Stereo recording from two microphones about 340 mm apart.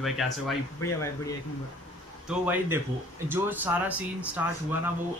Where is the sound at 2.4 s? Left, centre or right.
Centre.